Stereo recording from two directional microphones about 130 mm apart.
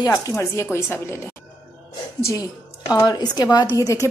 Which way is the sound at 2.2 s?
25° left (ahead or behind).